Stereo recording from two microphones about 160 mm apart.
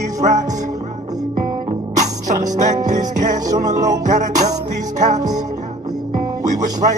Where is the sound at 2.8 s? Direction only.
50° right (ahead or behind).